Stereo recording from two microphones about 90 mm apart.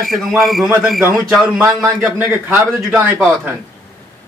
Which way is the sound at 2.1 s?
20° right (ahead or behind).